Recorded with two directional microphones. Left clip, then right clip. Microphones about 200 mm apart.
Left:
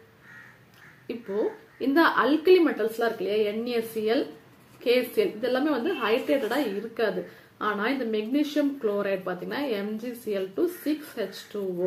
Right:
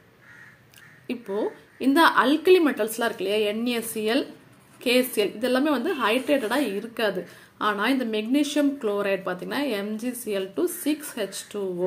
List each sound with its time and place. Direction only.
1.0 s a woman's voice: 30° right (ahead or behind)